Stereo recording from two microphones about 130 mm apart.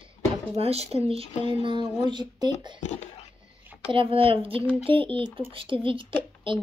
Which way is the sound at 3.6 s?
10° right (ahead or behind).